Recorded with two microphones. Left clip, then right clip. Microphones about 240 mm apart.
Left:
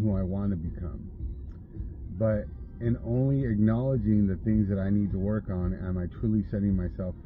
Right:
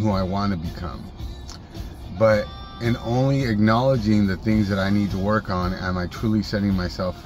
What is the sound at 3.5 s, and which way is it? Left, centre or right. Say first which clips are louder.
Speech: right 10 dB; right.